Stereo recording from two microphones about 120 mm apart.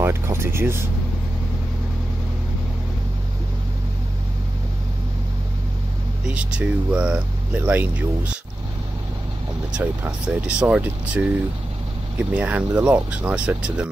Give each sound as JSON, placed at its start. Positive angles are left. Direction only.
{"t": 0.0, "sound": "speech", "side_deg": -20}
{"t": 6.2, "sound": "speech", "side_deg": -10}
{"t": 9.7, "sound": "speech", "side_deg": -10}